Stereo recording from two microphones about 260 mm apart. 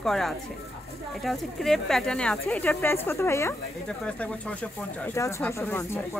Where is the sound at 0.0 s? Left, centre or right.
Centre.